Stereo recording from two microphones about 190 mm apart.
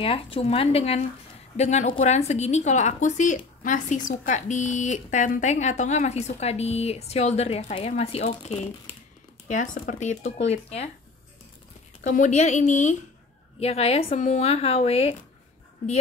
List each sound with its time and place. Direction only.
0.0 s a woman's voice: 30° left (ahead or behind)
12.0 s a woman's voice: 40° left (ahead or behind)